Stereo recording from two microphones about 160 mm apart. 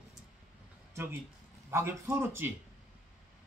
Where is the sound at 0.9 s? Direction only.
15° right (ahead or behind).